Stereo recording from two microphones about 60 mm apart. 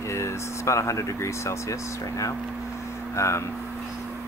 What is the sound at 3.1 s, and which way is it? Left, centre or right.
Speech, left.